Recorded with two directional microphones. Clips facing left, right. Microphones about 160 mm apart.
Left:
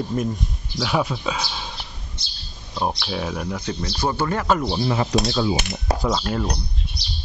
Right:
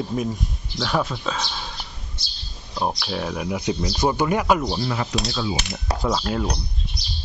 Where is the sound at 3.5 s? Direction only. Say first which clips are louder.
Right 3 dB; 15° right (ahead or behind).